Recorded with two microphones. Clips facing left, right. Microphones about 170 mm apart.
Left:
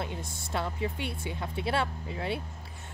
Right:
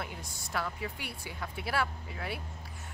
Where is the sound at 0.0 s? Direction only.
25° left (ahead or behind).